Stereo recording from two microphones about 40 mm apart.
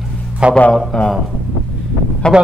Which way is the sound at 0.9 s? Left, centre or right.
Left.